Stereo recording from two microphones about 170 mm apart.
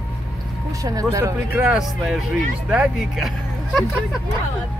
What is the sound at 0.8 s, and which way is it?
Speech, 20° right (ahead or behind).